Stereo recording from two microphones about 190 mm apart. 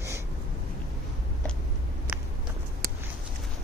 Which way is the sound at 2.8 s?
50° right (ahead or behind).